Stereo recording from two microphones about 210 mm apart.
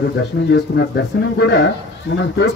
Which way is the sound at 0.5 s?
55° left (ahead or behind).